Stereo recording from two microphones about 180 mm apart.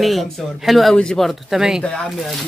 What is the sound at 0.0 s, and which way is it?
Speech, centre (ahead or behind).